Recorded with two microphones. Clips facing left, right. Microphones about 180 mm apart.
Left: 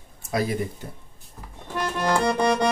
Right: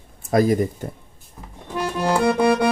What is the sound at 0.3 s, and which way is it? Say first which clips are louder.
Speech: right 8 dB; 45° right (ahead or behind).